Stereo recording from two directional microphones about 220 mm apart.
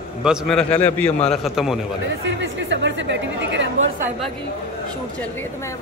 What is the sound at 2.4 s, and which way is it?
Speech, 55° right (ahead or behind).